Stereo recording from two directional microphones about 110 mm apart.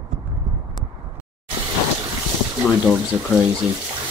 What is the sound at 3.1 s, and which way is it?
Speech, 30° right (ahead or behind).